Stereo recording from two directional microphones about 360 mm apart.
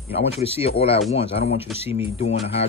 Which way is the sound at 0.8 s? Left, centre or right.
Centre.